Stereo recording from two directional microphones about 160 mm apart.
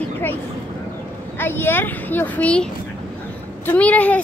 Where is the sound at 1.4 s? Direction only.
15° left (ahead or behind).